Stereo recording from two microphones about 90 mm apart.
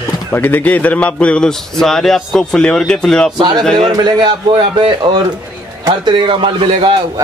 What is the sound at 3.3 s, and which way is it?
A man's voice, 55° right (ahead or behind).